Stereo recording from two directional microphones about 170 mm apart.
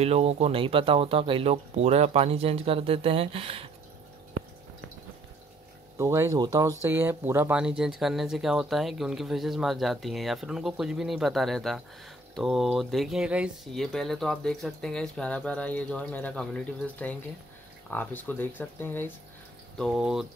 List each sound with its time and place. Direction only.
0.0 s speech: 40° right (ahead or behind)
5.9 s speech: 15° right (ahead or behind); by 19.1 s 10° left (ahead or behind)
19.8 s speech: 5° right (ahead or behind)